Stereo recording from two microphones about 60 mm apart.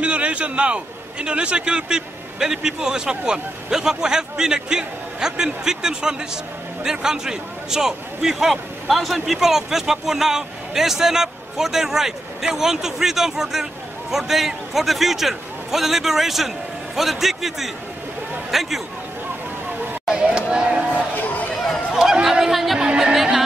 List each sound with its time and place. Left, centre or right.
0.0 s a man's voice: right; by 18.8 s centre
20.1 s a sound: centre
21.2 s run: left
22.1 s chatter: centre
22.8 s music: centre